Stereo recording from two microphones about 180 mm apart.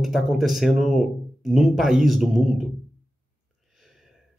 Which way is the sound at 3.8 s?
Centre (ahead or behind).